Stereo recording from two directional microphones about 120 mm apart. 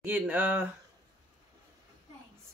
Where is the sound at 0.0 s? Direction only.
15° right (ahead or behind).